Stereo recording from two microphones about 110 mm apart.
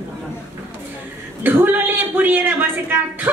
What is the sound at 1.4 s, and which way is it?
Speech, 15° right (ahead or behind).